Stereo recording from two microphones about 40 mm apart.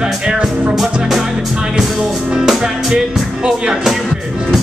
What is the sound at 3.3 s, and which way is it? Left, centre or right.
Speech, centre.